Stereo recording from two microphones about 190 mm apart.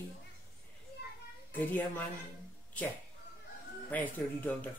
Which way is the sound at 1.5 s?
10° left (ahead or behind).